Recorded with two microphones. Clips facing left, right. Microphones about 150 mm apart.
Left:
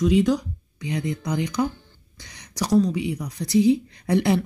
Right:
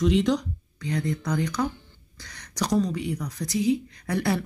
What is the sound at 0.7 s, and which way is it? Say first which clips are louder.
A woman's voice: left 1 dB; 15° left (ahead or behind).